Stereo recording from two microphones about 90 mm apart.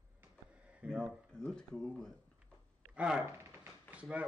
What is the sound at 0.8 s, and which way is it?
Speech, 10° right (ahead or behind).